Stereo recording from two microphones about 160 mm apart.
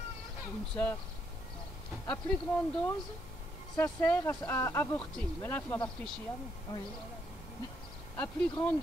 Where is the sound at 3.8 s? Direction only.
15° left (ahead or behind).